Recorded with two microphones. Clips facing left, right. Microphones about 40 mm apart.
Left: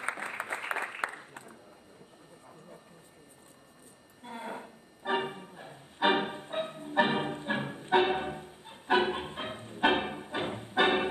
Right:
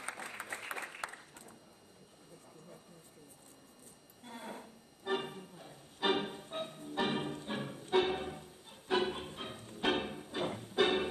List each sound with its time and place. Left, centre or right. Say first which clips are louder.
0.0 s applause: left 8 dB; left
4.2 s music: left 6 dB; left